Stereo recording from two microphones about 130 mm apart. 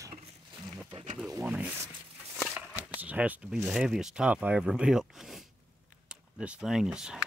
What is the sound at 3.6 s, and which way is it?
Speech, 10° right (ahead or behind).